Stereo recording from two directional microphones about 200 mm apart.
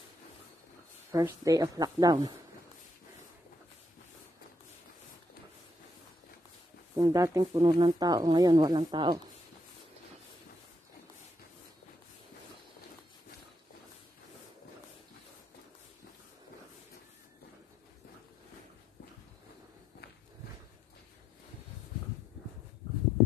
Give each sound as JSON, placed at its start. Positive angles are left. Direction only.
{"t": 1.1, "sound": "speech", "side_deg": -15}
{"t": 7.0, "sound": "speech", "side_deg": -20}